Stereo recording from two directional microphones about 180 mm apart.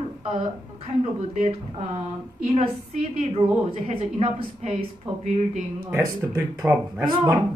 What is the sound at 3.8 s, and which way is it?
A woman's voice, 35° right (ahead or behind).